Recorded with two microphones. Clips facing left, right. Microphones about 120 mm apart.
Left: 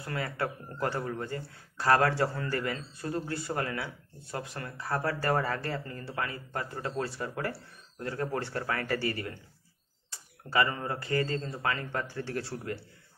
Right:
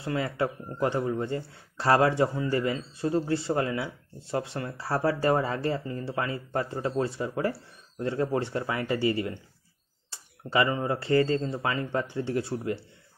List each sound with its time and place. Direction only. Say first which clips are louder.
0.0 s speech: right 5 dB; 25° right (ahead or behind)